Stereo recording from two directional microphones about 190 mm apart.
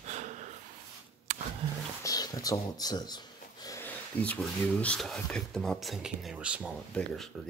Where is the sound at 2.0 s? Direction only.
20° left (ahead or behind).